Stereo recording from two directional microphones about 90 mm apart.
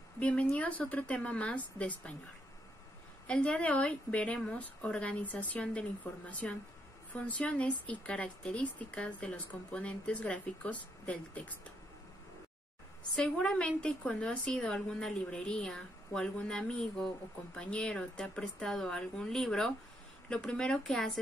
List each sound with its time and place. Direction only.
0.2 s speech: 15° left (ahead or behind)
3.3 s speech: 15° left (ahead or behind)
13.1 s speech: 10° left (ahead or behind)